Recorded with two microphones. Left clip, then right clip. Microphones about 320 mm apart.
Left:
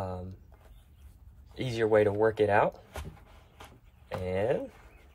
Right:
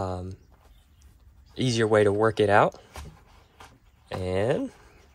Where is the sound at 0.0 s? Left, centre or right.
Centre.